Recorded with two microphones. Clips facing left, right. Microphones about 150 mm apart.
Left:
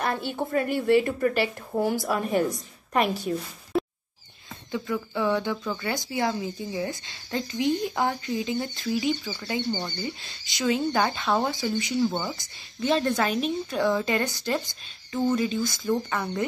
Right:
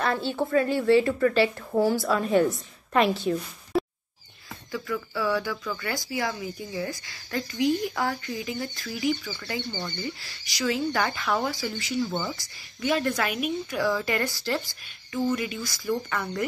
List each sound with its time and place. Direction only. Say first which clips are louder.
0.0 s speech: right 2 dB; 20° left (ahead or behind)
4.7 s speech: left 2 dB; 20° left (ahead or behind)
12.8 s speech: left 2 dB; 25° left (ahead or behind)